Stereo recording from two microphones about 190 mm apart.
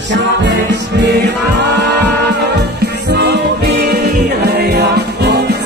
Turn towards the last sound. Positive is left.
turn(degrees=-60)  # may be behind; listen again after turning